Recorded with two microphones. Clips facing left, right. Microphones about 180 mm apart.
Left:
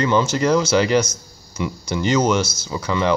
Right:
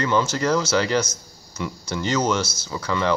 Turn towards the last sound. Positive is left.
turn(degrees=15)  # may be behind; listen again after turning